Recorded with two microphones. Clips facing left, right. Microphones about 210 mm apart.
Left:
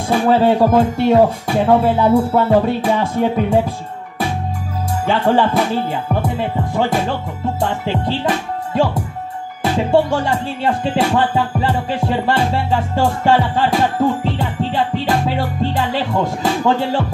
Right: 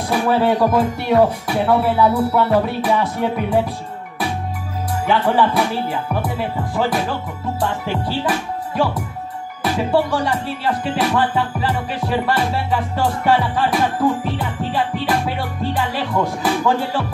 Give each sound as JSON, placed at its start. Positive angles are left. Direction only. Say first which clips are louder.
{"t": 0.1, "sound": "speech", "louder": "left 4 dB", "side_deg": 25}
{"t": 5.0, "sound": "speech", "louder": "left 2 dB", "side_deg": 25}
{"t": 9.6, "sound": "music", "louder": "left 3 dB", "side_deg": 25}